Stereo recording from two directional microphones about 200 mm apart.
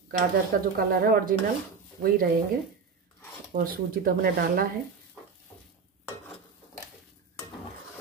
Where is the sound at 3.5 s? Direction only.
45° right (ahead or behind).